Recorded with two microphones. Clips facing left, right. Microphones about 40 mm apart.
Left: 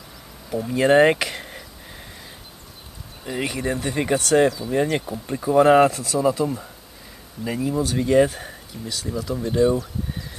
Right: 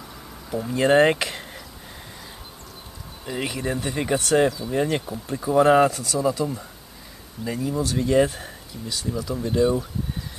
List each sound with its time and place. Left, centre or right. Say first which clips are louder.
0.5 s speech: left 2 dB; centre
3.3 s speech: left 2 dB; centre